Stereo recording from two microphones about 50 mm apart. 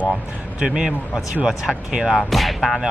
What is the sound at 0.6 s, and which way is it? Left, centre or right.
A man's voice, centre.